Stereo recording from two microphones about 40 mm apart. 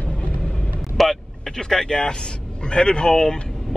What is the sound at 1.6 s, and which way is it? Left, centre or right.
Speech, centre.